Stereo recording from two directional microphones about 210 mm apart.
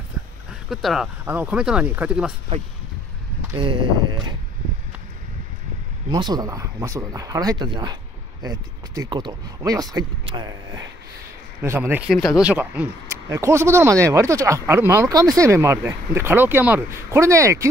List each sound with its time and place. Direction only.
0.7 s speech: centre (ahead or behind)
3.5 s speech: 25° right (ahead or behind)
6.0 s speech: 20° right (ahead or behind)